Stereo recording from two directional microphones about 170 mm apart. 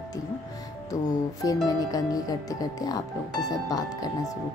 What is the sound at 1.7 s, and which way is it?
Speech, 20° left (ahead or behind).